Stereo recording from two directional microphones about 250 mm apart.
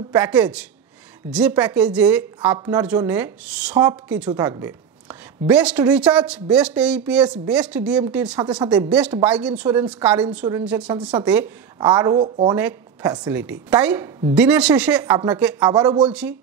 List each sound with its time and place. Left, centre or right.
0.1 s a woman's voice: centre
11.8 s a woman's voice: centre
13.3 s a woman's voice: centre
16.1 s speech: centre